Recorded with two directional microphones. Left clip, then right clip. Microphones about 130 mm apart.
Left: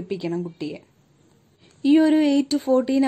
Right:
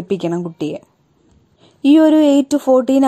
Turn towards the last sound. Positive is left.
turn(degrees=-40)  # may be behind; listen again after turning